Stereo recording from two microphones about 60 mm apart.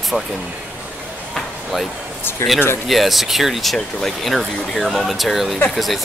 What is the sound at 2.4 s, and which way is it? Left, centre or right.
Speech, left.